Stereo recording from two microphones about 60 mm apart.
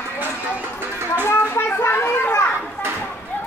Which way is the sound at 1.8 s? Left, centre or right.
Left.